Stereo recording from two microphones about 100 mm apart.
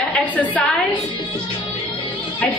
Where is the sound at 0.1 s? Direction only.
15° left (ahead or behind).